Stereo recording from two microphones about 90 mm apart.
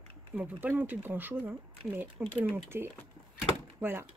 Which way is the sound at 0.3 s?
10° right (ahead or behind).